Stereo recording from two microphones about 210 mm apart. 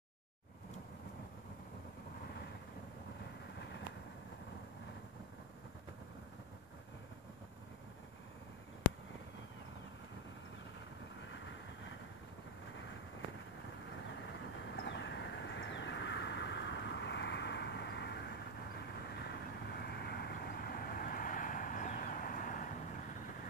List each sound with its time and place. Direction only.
3.5 s vehicle: 55° left (ahead or behind)
11.1 s vehicle: 60° left (ahead or behind)
14.8 s vehicle: 55° left (ahead or behind); by 22.7 s 40° left (ahead or behind)